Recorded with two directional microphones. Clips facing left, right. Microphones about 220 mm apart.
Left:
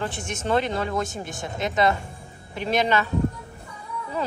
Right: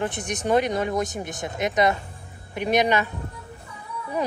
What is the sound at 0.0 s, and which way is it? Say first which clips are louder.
Speech: right 2 dB; 20° right (ahead or behind).